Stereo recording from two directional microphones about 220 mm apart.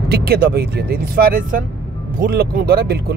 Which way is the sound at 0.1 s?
45° right (ahead or behind).